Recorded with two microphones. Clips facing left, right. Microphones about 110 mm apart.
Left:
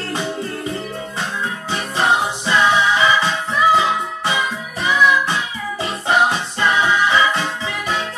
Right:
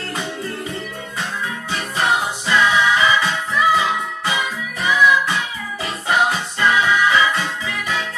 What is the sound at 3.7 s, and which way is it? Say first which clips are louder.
Music: left 2 dB; 30° left (ahead or behind).